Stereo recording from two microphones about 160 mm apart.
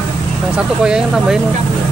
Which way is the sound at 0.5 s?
5° right (ahead or behind).